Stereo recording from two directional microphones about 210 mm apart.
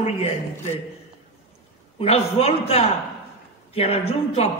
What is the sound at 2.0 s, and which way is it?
A man's voice, 30° left (ahead or behind).